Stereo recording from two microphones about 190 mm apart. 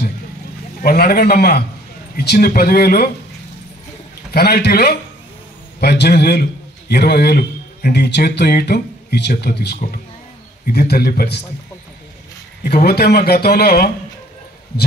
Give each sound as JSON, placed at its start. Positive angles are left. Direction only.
{"t": 0.8, "sound": "a man's voice", "side_deg": 55}
{"t": 4.3, "sound": "a man's voice", "side_deg": 60}
{"t": 12.6, "sound": "speech", "side_deg": 55}